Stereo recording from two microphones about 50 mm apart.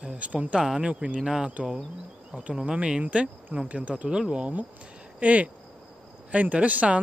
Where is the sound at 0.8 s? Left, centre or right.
Right.